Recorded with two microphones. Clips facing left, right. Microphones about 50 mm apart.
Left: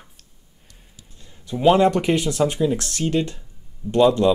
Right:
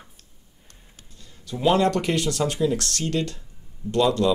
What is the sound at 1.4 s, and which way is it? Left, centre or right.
Speech, centre.